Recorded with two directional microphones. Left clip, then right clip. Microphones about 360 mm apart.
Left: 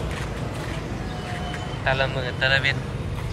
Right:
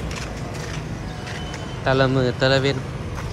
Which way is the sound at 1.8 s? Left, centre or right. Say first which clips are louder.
Right 5 dB; centre.